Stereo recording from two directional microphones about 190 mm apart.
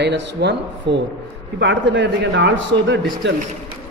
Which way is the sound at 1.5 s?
70° right (ahead or behind).